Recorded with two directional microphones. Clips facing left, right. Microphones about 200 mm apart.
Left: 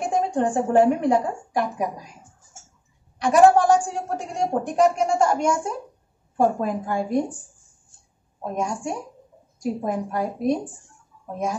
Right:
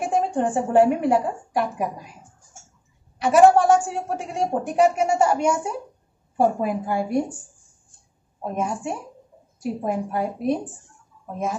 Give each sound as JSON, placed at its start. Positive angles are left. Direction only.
{"t": 0.0, "sound": "a woman's voice", "side_deg": -5}
{"t": 3.2, "sound": "a man's voice", "side_deg": -5}
{"t": 8.5, "sound": "a woman's voice", "side_deg": -5}